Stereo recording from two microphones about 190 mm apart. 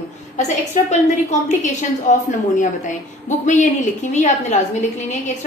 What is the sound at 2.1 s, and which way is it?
Speech, 40° left (ahead or behind).